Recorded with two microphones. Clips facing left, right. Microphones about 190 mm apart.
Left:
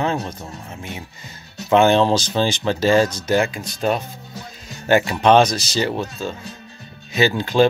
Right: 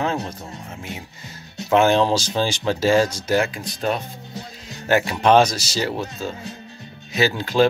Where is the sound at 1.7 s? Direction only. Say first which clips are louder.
Left 2 dB; 5° right (ahead or behind).